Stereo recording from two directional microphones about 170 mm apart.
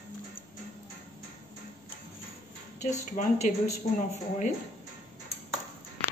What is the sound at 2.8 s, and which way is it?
Speech, 45° left (ahead or behind).